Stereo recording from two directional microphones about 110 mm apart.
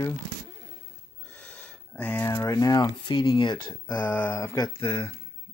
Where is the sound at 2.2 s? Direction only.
30° left (ahead or behind).